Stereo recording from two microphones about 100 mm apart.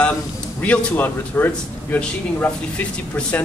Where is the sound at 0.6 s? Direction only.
20° left (ahead or behind).